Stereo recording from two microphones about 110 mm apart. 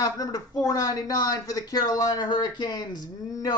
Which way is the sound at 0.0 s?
35° left (ahead or behind).